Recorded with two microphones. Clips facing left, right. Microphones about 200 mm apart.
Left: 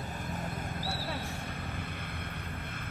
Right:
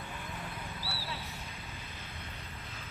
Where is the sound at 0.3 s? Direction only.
45° left (ahead or behind).